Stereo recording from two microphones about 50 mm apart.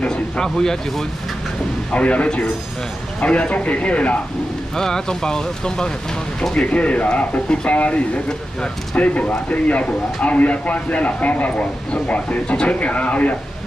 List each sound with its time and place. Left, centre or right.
0.0 s speech: centre
1.9 s speech: left
4.7 s speech: centre
6.5 s speech: left